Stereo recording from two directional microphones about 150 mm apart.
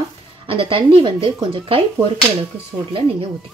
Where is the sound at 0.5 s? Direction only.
35° right (ahead or behind).